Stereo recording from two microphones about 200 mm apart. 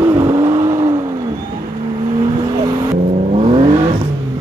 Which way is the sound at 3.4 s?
30° right (ahead or behind).